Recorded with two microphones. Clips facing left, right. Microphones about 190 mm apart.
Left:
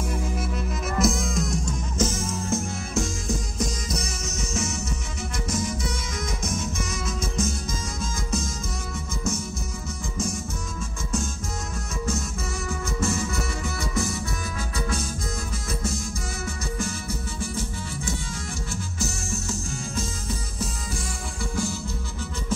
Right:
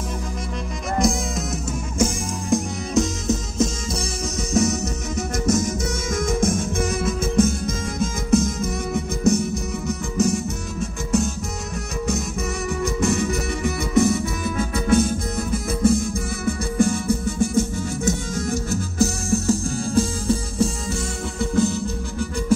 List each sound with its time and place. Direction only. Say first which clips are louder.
0.9 s music: right 3 dB; centre (ahead or behind); by 4.0 s 25° right (ahead or behind)
4.6 s music: right 11 dB; 40° right (ahead or behind); by 11.2 s 65° right (ahead or behind)
12.8 s music: right 6 dB; 65° right (ahead or behind)
14.6 s music: right 13 dB; 55° right (ahead or behind); by 21.7 s 20° right (ahead or behind)